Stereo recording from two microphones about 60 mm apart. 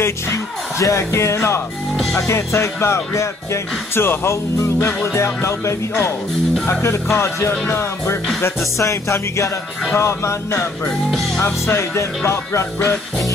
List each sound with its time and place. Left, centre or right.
0.0 s music: left
8.7 s music: left
9.9 s music: left